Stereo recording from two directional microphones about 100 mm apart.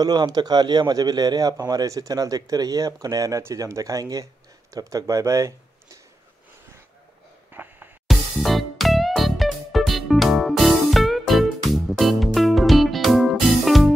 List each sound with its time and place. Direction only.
0.0 s a man's voice: 40° right (ahead or behind)
7.5 s a sound: 20° right (ahead or behind)
8.1 s music: centre (ahead or behind)